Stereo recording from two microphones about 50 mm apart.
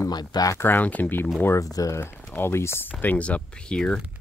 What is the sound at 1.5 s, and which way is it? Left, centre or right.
Speech, left.